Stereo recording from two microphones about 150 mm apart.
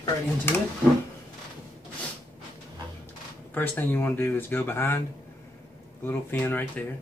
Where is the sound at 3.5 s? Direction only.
15° left (ahead or behind).